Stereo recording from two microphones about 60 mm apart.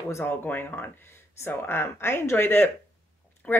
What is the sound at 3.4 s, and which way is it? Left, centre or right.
Speech, left.